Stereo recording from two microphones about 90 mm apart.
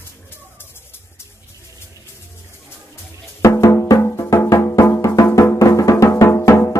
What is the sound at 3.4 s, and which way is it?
Music, 35° left (ahead or behind).